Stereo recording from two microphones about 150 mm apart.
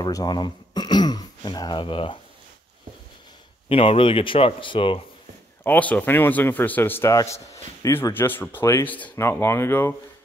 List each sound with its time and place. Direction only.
0.0 s speech: 25° left (ahead or behind)
3.6 s speech: 40° left (ahead or behind)
5.6 s a man's voice: 10° left (ahead or behind)